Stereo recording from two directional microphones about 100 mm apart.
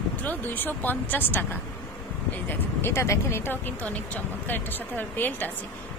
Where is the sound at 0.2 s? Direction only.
20° left (ahead or behind).